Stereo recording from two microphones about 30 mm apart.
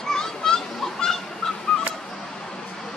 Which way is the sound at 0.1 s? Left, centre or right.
Centre.